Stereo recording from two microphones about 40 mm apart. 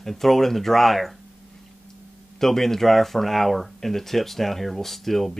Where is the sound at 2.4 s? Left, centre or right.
Centre.